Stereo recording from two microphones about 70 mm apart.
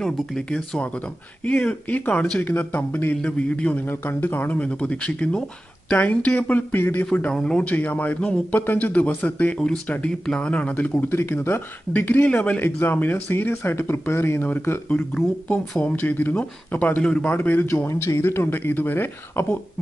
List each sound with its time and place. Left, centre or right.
0.0 s a man's voice: centre
4.0 s a man's voice: left
7.3 s speech: centre
7.7 s a man's voice: left
10.2 s speech: centre
10.7 s a man's voice: left; by 17.3 s centre
17.3 s a man's voice: left
17.8 s speech: left